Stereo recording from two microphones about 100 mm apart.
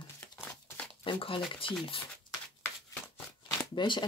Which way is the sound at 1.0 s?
60° left (ahead or behind).